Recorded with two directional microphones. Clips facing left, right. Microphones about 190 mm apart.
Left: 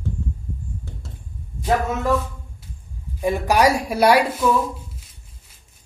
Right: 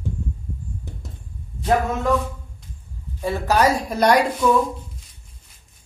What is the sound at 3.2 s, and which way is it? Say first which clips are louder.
A woman's voice: left 1 dB; 15° left (ahead or behind).